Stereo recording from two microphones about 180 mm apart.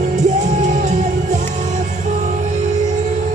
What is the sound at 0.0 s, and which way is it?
Music, 40° right (ahead or behind).